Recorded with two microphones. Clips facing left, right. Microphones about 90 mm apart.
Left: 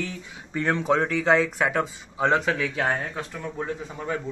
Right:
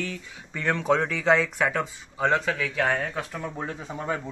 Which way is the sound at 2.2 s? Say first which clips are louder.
Left 2 dB; 20° left (ahead or behind).